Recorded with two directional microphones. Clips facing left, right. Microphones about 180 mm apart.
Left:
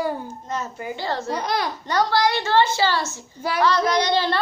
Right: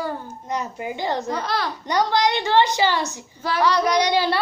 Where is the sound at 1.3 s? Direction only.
15° left (ahead or behind).